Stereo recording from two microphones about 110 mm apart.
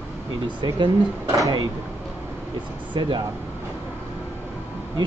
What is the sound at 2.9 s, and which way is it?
Speech, 45° right (ahead or behind).